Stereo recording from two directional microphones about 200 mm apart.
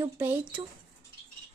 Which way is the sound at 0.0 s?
10° right (ahead or behind).